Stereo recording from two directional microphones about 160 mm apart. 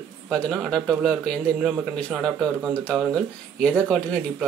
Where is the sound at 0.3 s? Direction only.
Centre (ahead or behind).